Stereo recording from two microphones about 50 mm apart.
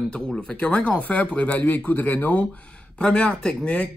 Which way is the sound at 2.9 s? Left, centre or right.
Centre.